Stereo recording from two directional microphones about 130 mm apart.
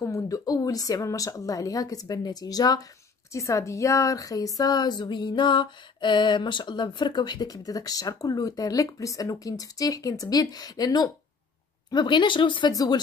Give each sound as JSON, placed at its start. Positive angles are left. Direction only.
{"t": 0.0, "sound": "a woman's voice", "side_deg": 25}